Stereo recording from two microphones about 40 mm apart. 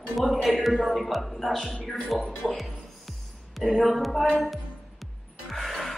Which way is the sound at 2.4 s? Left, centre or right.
Centre.